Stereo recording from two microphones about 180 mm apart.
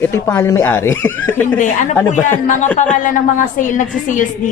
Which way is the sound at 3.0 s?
45° left (ahead or behind).